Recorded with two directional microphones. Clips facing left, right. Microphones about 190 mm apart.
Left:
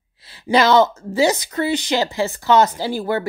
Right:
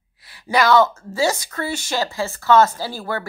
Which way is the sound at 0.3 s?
25° left (ahead or behind).